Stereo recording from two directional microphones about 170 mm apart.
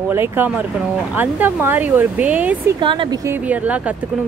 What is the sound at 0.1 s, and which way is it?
Speech, 10° right (ahead or behind).